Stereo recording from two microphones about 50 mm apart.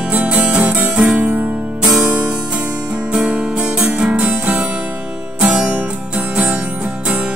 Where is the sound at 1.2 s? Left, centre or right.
Right.